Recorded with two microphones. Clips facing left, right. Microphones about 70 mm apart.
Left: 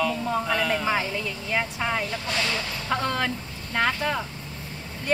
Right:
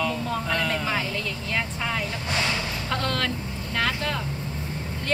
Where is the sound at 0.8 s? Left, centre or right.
Centre.